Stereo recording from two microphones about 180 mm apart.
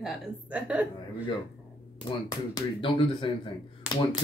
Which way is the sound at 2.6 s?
30° left (ahead or behind).